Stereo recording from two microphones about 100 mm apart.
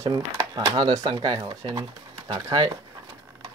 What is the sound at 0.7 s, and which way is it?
Speech, 50° right (ahead or behind).